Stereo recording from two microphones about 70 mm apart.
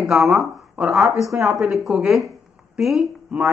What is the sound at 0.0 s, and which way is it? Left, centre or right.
Speech, centre.